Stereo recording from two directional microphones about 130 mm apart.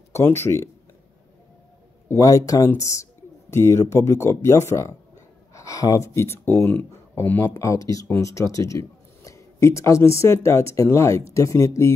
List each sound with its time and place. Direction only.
0.1 s speech: 20° left (ahead or behind)
2.0 s speech: 25° left (ahead or behind)